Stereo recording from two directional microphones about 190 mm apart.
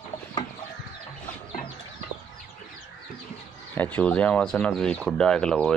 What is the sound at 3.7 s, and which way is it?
Speech, 10° left (ahead or behind).